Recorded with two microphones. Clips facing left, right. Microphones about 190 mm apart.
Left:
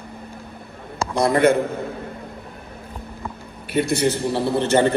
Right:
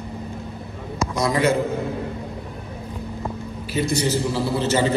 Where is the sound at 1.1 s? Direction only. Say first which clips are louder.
Left 4 dB; 55° left (ahead or behind).